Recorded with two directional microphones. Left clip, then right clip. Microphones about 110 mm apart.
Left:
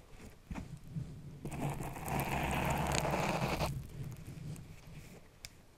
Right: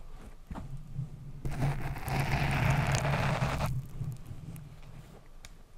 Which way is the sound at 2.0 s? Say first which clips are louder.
Right 3 dB; 75° right (ahead or behind).